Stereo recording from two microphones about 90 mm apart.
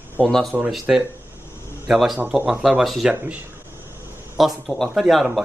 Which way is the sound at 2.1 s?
15° right (ahead or behind).